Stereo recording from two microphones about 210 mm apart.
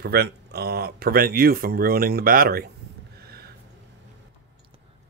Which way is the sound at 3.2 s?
45° right (ahead or behind).